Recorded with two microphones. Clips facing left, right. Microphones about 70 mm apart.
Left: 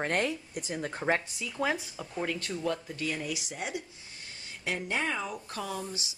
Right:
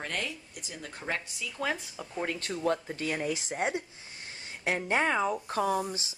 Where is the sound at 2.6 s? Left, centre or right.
Right.